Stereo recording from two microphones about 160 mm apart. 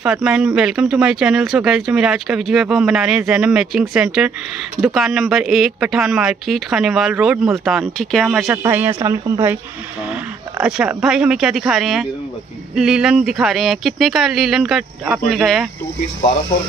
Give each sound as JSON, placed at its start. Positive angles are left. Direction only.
{"t": 0.0, "sound": "speech", "side_deg": -5}
{"t": 8.5, "sound": "speech", "side_deg": -15}
{"t": 10.0, "sound": "speech", "side_deg": -5}